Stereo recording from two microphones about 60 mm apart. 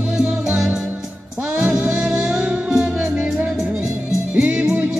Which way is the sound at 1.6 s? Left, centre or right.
Right.